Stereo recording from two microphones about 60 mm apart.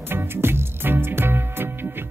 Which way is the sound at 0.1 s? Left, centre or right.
Right.